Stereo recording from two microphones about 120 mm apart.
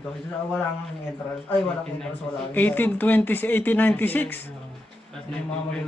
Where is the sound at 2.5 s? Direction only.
15° left (ahead or behind).